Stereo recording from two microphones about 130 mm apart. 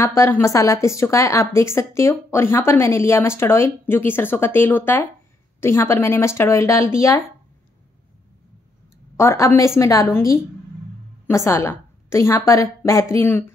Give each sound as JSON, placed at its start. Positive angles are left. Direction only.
{"t": 0.0, "sound": "a woman's voice", "side_deg": 20}
{"t": 9.1, "sound": "a woman's voice", "side_deg": 20}